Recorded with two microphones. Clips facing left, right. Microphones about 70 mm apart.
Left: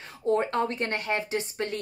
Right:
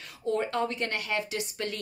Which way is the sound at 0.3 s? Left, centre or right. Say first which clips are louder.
Left 3 dB; left.